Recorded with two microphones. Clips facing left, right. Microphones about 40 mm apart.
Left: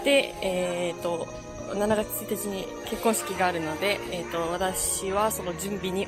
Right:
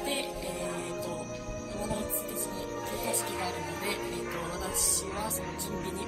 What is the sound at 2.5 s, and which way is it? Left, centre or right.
Speech, left.